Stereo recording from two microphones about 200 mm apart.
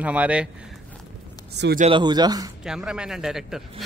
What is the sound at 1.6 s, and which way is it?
Speech, 60° right (ahead or behind).